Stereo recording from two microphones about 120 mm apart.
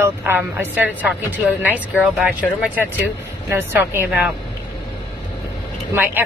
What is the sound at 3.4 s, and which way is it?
Speech, 20° right (ahead or behind).